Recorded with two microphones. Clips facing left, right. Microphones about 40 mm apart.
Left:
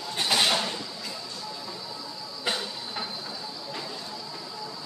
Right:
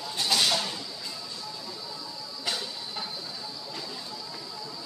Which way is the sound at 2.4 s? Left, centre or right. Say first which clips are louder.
Left 3 dB; left.